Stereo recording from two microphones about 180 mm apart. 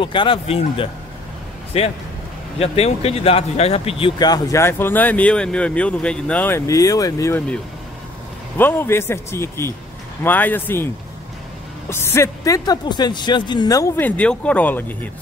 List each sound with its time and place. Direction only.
0.0 s speech: 25° left (ahead or behind); by 10.9 s 10° left (ahead or behind)
11.9 s speech: 15° left (ahead or behind)